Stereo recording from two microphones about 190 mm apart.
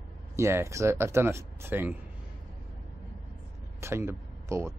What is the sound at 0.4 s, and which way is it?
Speech, 15° right (ahead or behind).